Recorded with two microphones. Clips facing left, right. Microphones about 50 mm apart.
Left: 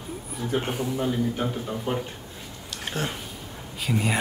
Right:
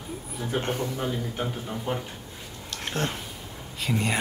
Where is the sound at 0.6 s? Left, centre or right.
Centre.